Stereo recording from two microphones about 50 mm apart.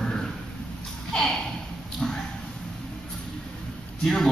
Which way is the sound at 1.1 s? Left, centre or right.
Centre.